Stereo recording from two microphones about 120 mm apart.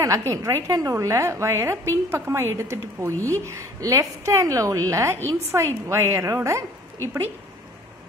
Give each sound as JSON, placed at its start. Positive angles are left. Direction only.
{"t": 0.0, "sound": "a woman's voice", "side_deg": -25}
{"t": 3.2, "sound": "a woman's voice", "side_deg": 15}
{"t": 3.4, "sound": "a woman's voice", "side_deg": -25}